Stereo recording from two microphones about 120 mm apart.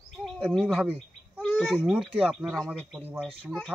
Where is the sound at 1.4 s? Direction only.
15° left (ahead or behind).